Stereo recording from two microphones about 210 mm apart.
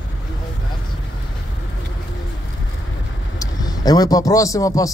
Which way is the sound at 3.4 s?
20° left (ahead or behind).